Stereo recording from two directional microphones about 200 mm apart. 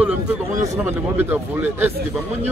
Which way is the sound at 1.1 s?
10° right (ahead or behind).